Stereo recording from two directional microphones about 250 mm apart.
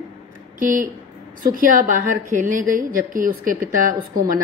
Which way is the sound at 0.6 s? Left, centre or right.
Right.